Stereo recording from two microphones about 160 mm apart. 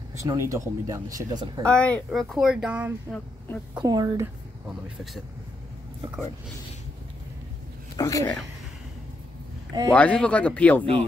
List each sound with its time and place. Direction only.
0.1 s speech: 20° right (ahead or behind)
1.6 s speech: 5° left (ahead or behind)
3.8 s speech: 25° right (ahead or behind)
4.6 s speech: 5° right (ahead or behind)
7.9 s speech: 20° left (ahead or behind)
9.9 s speech: 5° left (ahead or behind)